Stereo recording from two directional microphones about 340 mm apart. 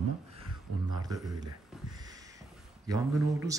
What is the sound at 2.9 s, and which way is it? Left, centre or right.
Speech, centre.